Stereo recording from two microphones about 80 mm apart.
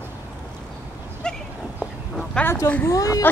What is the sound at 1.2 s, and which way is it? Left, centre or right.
Goat, centre.